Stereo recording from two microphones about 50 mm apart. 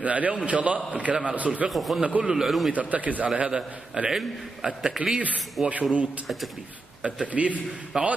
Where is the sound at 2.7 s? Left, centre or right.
Right.